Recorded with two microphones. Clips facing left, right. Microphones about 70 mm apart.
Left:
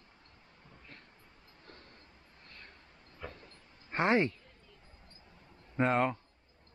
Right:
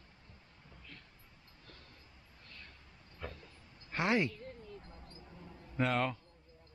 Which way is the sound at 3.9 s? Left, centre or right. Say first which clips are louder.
Left 4 dB; left.